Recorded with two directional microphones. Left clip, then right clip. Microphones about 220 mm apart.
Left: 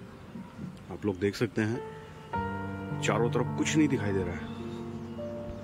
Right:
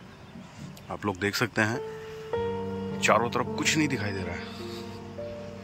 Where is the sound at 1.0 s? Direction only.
10° left (ahead or behind).